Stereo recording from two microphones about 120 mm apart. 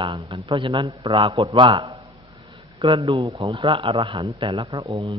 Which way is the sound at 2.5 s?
45° right (ahead or behind).